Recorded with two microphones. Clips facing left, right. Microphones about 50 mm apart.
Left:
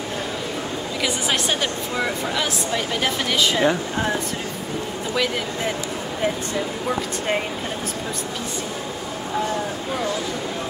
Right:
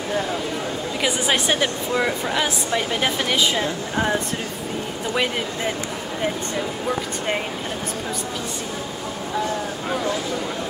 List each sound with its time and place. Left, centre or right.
1.0 s speech: centre
6.9 s speech: centre